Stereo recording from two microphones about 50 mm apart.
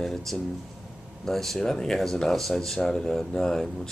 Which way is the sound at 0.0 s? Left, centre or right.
Centre.